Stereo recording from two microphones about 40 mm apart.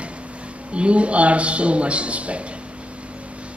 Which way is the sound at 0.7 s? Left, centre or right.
Right.